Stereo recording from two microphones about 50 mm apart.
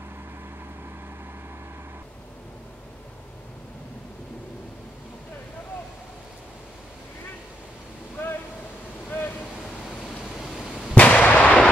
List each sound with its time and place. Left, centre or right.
8.2 s vehicle: left
9.1 s waves: left
10.4 s a sound: centre
11.0 s artillery fire: left